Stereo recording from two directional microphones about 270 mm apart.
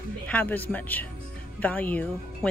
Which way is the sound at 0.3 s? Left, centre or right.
Centre.